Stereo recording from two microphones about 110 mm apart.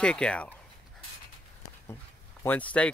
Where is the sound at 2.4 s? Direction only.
15° left (ahead or behind).